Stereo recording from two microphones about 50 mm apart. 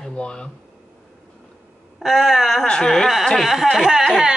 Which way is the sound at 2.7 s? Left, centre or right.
Centre.